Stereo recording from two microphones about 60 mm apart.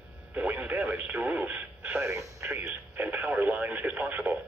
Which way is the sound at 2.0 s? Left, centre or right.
Right.